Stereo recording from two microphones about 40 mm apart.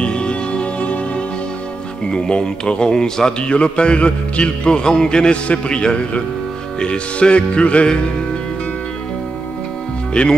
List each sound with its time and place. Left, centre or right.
0.0 s music: left
2.0 s speech: left
10.2 s speech: left